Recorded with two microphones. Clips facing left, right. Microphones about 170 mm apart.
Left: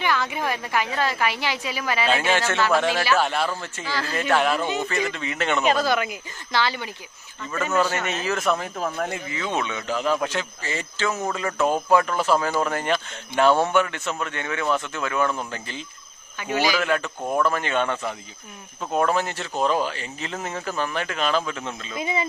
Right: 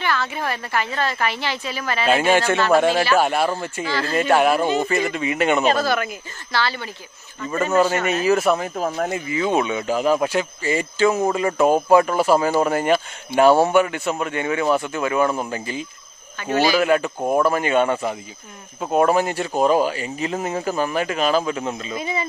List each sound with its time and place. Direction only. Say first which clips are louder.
0.0 s a woman's voice: right 1 dB; 15° left (ahead or behind)
2.3 s speech: right 5 dB; 15° right (ahead or behind)
5.9 s a woman's voice: right 1 dB; 15° left (ahead or behind)
7.7 s speech: right 5 dB; 10° right (ahead or behind)
16.3 s a woman's voice: right 4 dB; 10° left (ahead or behind)
16.7 s speech: right 6 dB; 10° right (ahead or behind)